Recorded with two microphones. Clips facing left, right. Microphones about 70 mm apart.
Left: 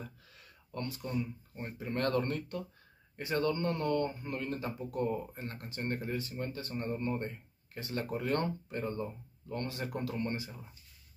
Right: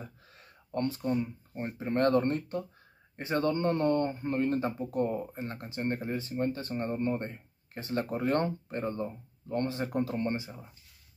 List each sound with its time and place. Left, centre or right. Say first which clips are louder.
0.4 s speech: right 8 dB; right